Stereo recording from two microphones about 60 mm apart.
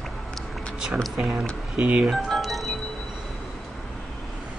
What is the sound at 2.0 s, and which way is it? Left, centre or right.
Music, centre.